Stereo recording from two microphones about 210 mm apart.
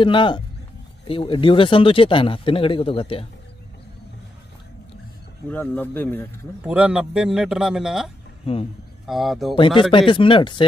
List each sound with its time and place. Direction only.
0.0 s speech: 25° left (ahead or behind)
5.5 s a man's voice: 10° left (ahead or behind)
6.6 s a man's voice: 5° right (ahead or behind)
9.8 s speech: 25° left (ahead or behind)